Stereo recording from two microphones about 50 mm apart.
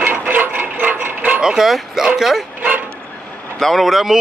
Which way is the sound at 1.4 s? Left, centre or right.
Centre.